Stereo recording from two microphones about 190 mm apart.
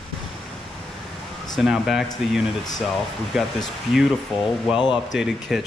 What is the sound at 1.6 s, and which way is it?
Speech, centre (ahead or behind).